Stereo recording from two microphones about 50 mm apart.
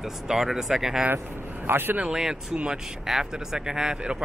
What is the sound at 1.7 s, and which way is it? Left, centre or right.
Speech, right.